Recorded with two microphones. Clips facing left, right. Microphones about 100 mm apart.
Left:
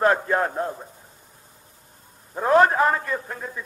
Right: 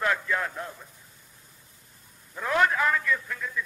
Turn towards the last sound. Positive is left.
turn(degrees=40)  # may be behind; listen again after turning